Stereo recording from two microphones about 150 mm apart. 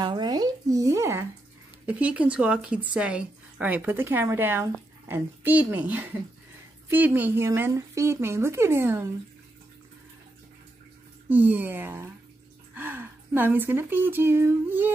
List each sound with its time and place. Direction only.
0.0 s a sound: 30° right (ahead or behind)
1.9 s a woman's voice: 10° right (ahead or behind)
11.2 s a woman's voice: 10° right (ahead or behind)